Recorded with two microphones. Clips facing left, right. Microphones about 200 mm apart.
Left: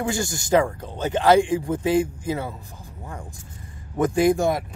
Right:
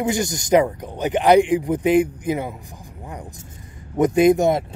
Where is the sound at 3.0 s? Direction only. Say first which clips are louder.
Right 2 dB; 15° right (ahead or behind).